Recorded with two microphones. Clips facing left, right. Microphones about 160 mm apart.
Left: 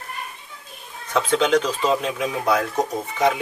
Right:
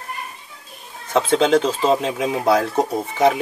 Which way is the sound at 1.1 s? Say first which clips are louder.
Right 3 dB; 30° right (ahead or behind).